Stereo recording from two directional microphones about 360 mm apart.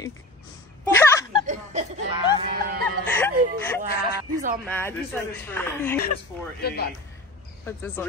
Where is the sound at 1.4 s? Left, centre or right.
Centre.